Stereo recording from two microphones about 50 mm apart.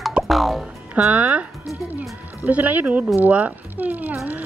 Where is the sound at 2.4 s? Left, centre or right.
Right.